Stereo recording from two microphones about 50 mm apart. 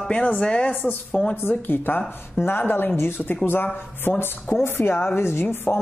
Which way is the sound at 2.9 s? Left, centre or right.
Left.